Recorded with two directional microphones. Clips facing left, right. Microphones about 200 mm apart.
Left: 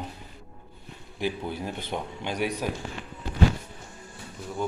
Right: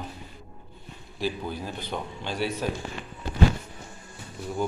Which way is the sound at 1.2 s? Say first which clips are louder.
Even; 20° left (ahead or behind).